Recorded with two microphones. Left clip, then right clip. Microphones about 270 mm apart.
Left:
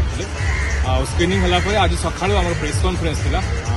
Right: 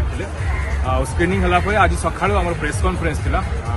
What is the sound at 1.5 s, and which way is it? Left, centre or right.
Speech, centre.